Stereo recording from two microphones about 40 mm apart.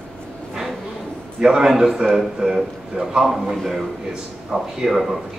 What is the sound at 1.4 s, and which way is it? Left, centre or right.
A man's voice, centre.